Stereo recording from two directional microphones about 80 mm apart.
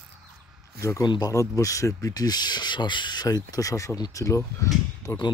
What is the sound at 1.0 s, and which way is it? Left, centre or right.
Speech, left.